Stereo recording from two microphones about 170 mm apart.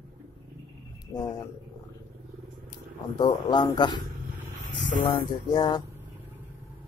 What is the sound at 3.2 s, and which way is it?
Speech, 25° left (ahead or behind).